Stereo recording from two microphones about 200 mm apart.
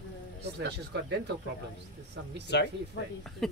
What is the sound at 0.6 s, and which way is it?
Speech, 60° right (ahead or behind).